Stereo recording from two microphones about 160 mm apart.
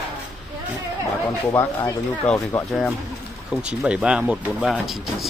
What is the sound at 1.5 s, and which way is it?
Speech, 20° left (ahead or behind).